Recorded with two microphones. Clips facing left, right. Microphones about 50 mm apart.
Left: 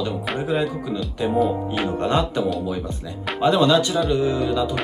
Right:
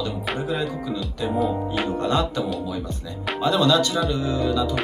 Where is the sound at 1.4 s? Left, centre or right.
Centre.